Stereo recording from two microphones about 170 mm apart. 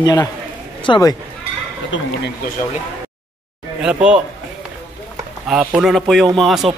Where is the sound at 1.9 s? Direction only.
90° left.